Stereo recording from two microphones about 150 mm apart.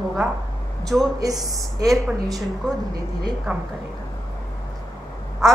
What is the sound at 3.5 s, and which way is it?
Speech, 5° right (ahead or behind).